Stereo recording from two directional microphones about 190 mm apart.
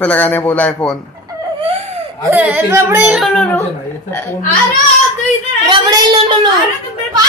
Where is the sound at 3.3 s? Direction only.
10° left (ahead or behind).